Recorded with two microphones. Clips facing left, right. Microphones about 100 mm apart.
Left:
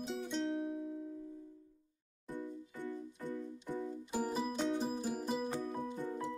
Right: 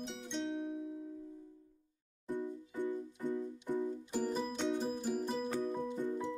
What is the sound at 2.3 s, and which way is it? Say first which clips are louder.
Music: right 4 dB; 15° right (ahead or behind).